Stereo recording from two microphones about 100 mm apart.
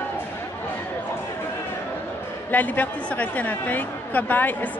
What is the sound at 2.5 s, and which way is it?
A woman's voice, 15° left (ahead or behind).